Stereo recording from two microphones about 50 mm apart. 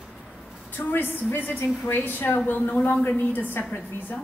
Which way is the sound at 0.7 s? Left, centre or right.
Left.